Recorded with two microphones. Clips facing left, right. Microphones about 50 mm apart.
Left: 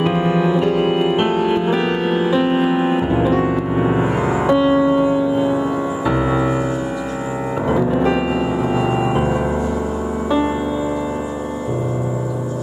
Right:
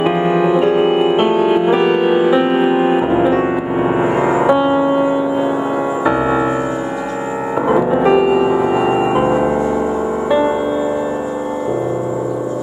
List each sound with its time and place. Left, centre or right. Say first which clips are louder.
0.0 s music: right 3 dB; right
7.6 s music: right 4 dB; right